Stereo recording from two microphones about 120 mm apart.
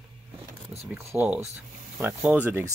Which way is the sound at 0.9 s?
15° right (ahead or behind).